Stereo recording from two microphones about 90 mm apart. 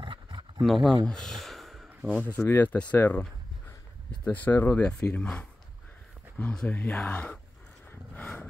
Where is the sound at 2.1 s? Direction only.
20° left (ahead or behind).